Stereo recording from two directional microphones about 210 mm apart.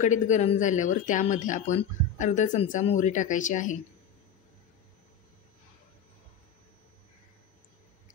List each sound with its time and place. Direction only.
0.0 s speech: 35° left (ahead or behind)